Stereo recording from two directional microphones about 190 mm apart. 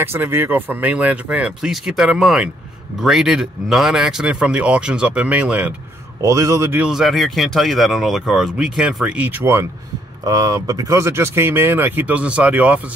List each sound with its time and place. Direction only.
0.0 s speech: 10° right (ahead or behind)